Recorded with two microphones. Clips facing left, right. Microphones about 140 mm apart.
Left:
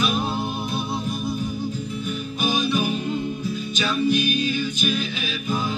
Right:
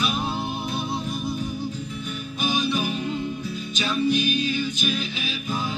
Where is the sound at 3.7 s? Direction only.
30° right (ahead or behind).